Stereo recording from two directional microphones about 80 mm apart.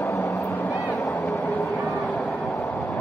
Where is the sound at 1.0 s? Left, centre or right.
Left.